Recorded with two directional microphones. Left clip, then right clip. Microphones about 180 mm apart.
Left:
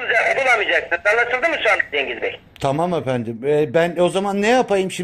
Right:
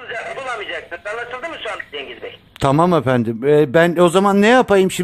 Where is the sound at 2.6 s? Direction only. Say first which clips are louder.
Right 5 dB; 55° right (ahead or behind).